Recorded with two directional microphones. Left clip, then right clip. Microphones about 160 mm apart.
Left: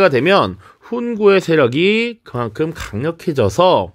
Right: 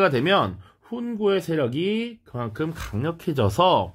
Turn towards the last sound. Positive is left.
turn(degrees=40)  # may be behind; listen again after turning